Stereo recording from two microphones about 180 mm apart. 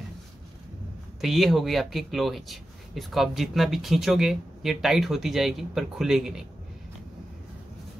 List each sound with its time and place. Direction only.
1.2 s speech: centre (ahead or behind)